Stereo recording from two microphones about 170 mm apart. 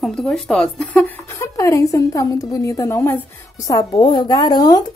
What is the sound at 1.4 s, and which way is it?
A woman's voice, 20° left (ahead or behind).